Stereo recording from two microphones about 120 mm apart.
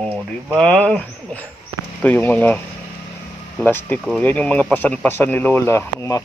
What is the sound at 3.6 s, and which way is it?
Speech, 15° left (ahead or behind).